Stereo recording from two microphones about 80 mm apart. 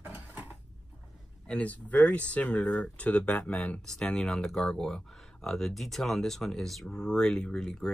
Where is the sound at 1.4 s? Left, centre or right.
Centre.